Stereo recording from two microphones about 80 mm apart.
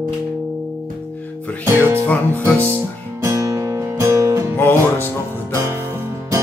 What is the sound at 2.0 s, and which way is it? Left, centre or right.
Music, centre.